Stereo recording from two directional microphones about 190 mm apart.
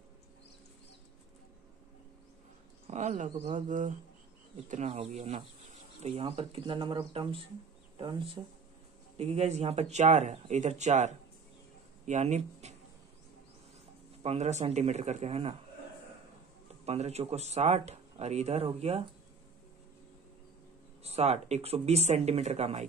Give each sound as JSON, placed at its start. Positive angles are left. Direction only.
{"t": 2.9, "sound": "speech", "side_deg": -40}
{"t": 9.1, "sound": "speech", "side_deg": -35}
{"t": 14.2, "sound": "speech", "side_deg": -35}
{"t": 16.8, "sound": "speech", "side_deg": -35}
{"t": 21.0, "sound": "speech", "side_deg": -35}